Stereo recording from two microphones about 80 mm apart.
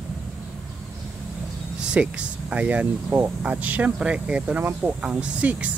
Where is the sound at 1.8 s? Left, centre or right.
Centre.